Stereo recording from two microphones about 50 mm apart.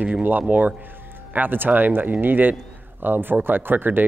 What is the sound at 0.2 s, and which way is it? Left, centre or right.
Speech, right.